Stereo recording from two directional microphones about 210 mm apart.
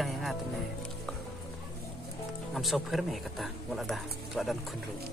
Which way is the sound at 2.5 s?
Centre (ahead or behind).